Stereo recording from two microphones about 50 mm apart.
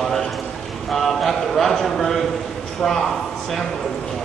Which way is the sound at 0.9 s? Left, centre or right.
Centre.